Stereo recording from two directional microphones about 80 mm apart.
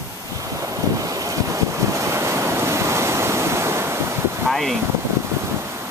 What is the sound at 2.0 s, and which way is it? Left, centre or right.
Waves, right.